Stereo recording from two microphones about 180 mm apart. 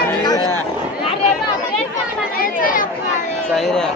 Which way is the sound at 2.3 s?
50° left (ahead or behind).